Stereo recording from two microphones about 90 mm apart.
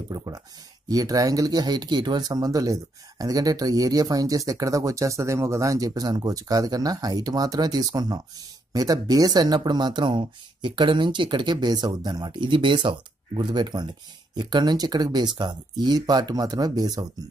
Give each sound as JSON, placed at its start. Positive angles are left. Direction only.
{"t": 0.1, "sound": "speech", "side_deg": -45}
{"t": 13.4, "sound": "speech", "side_deg": -55}